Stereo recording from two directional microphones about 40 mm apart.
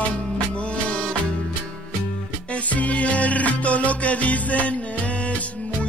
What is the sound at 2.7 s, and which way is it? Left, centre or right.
Music, left.